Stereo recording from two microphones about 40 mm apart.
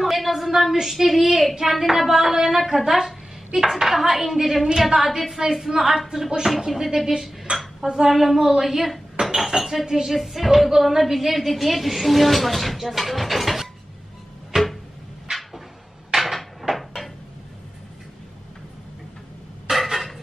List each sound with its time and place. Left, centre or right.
0.0 s a woman's voice: centre
7.1 s dishes: centre
7.8 s speech: centre
8.1 s a woman's voice: centre
9.3 s dishes: centre
9.6 s a woman's voice: centre
14.5 s a sound: centre
16.1 s cupboard open or close: centre
19.7 s a sound: centre